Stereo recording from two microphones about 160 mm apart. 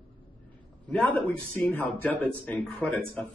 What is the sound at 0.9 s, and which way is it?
Speech, 10° left (ahead or behind).